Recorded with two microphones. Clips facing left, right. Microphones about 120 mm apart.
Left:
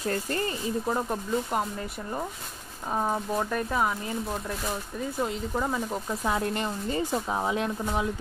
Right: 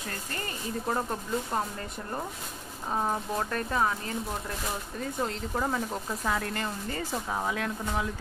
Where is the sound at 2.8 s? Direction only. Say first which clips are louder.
Left 2 dB; 5° left (ahead or behind).